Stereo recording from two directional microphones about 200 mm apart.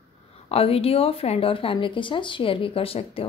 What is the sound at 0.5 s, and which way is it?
A woman's voice, 30° left (ahead or behind).